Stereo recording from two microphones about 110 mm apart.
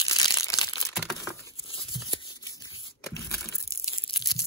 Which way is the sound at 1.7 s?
50° left (ahead or behind).